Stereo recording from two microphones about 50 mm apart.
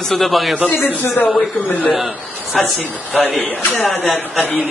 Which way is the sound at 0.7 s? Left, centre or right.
Left.